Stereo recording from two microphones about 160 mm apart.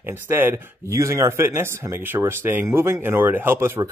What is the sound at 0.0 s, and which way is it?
Speech, 15° right (ahead or behind).